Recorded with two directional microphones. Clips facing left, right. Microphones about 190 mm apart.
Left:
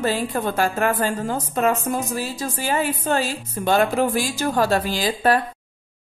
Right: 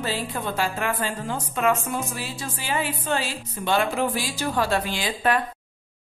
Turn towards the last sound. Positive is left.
turn(degrees=40)  # may be behind; listen again after turning